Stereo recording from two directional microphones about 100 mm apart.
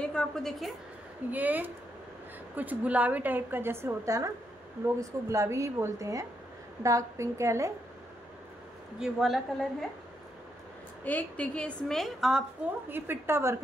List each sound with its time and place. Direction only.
0.0 s a woman's voice: 10° left (ahead or behind)
1.3 s a woman's voice: 15° right (ahead or behind)
9.0 s a woman's voice: centre (ahead or behind)
11.1 s a woman's voice: 15° left (ahead or behind); by 12.4 s 5° right (ahead or behind)
12.9 s a woman's voice: 20° right (ahead or behind)